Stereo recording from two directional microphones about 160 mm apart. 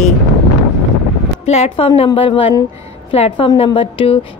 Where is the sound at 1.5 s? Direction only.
40° left (ahead or behind).